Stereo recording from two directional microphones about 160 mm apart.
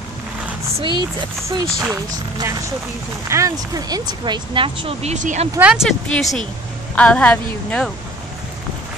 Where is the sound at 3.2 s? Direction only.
20° right (ahead or behind); by 5.5 s 50° right (ahead or behind).